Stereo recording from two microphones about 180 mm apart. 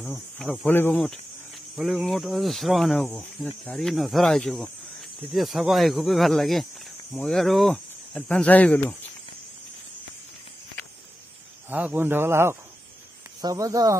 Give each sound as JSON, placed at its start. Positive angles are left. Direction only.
{"t": 0.0, "sound": "speech", "side_deg": 10}
{"t": 11.7, "sound": "speech", "side_deg": -10}